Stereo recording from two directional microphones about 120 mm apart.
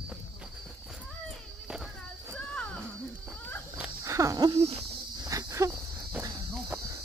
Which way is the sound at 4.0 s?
25° right (ahead or behind).